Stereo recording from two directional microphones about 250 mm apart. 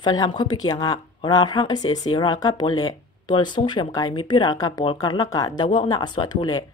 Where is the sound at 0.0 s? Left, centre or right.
Centre.